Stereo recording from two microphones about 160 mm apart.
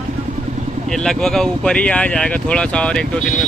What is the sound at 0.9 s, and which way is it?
Speech, 5° left (ahead or behind).